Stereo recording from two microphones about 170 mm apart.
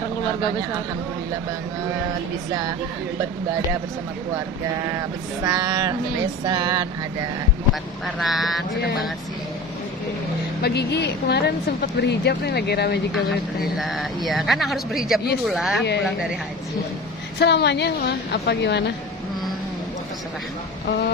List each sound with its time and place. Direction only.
4.9 s a sound: 20° right (ahead or behind)
8.3 s speech: centre (ahead or behind)
10.6 s speech: 75° left (ahead or behind)
13.7 s speech: centre (ahead or behind)
17.4 s a woman's voice: 85° left